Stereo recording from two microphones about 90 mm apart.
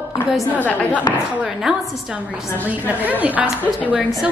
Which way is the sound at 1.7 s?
5° right (ahead or behind).